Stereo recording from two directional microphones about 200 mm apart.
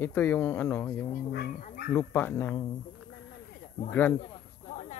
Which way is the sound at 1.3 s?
50° left (ahead or behind).